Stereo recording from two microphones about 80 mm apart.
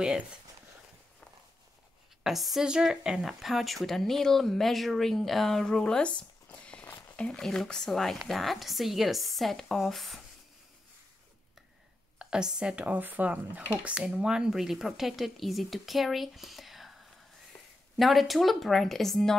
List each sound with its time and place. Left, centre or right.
2.2 s speech: centre
6.6 s a sound: centre
6.9 s speech: centre
12.2 s speech: centre
17.9 s speech: centre